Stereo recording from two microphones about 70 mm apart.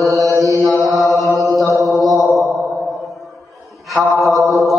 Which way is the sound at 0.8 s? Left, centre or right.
Centre.